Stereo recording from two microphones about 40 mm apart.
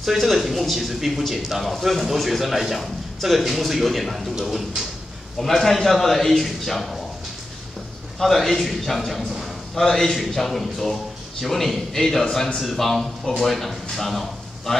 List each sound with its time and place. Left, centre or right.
0.0 s a man's voice: centre
8.2 s a man's voice: centre